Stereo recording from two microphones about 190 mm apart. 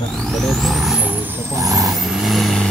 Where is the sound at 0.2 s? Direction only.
Centre (ahead or behind); by 2.0 s 20° right (ahead or behind).